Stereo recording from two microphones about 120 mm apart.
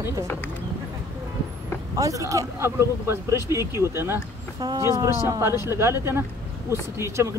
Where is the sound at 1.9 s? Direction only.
30° right (ahead or behind).